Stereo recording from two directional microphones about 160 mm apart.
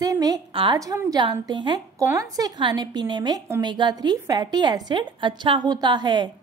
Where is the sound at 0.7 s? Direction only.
20° right (ahead or behind).